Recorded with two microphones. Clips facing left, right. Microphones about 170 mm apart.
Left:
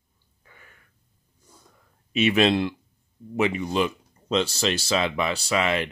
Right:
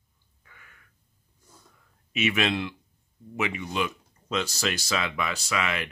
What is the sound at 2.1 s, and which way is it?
Speech, 30° left (ahead or behind).